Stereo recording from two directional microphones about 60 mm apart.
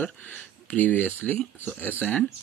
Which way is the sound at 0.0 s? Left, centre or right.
Left.